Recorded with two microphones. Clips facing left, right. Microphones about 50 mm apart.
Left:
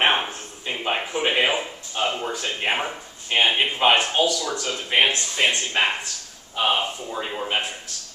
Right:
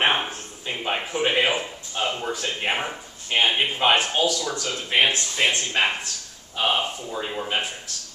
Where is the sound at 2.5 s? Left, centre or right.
Centre.